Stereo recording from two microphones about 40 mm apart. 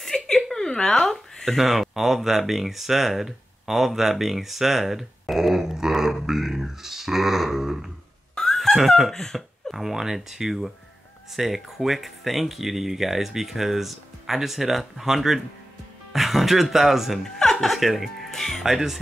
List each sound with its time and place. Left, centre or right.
0.1 s a sound: centre
1.4 s speech: centre
9.1 s cough: centre
9.8 s speech: centre
17.2 s chuckle: centre
17.6 s speech: centre
18.3 s speech: centre
18.6 s speech: centre